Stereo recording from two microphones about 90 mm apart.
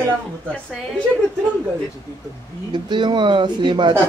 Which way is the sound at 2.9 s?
60° right (ahead or behind).